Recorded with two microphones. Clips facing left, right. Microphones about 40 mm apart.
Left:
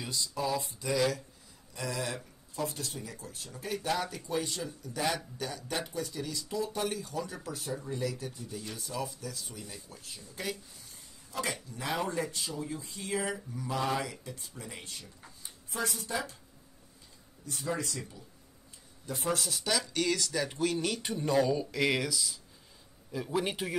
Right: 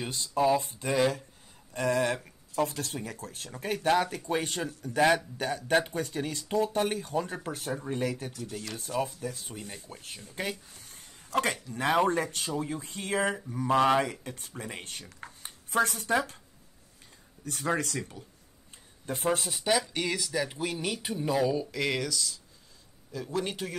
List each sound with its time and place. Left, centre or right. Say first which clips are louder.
0.0 s speech: right 7 dB; right
1.7 s speech: right 9 dB; right
8.3 s speech: right 3 dB; right
8.7 s speech: right 8 dB; right
15.2 s a sound: right 5 dB; right
17.5 s speech: right 5 dB; right
19.0 s speech: right 4 dB; right; by 23.8 s centre